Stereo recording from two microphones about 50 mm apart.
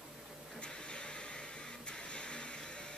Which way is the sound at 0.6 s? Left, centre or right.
Left.